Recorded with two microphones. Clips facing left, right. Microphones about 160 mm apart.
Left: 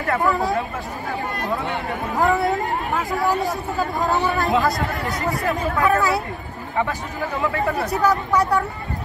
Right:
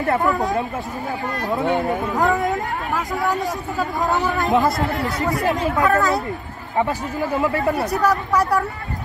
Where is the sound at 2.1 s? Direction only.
Centre (ahead or behind).